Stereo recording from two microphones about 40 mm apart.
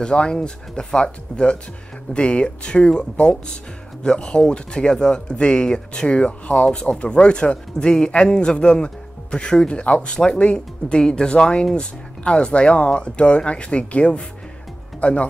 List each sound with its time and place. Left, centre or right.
0.0 s speech: left
6.0 s speech: left